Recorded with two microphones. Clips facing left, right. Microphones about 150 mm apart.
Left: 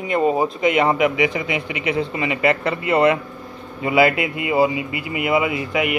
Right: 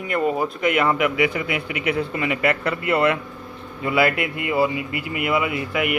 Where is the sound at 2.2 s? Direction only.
30° left (ahead or behind).